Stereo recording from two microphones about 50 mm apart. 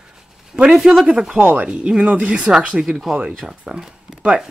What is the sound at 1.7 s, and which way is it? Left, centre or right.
Speech, right.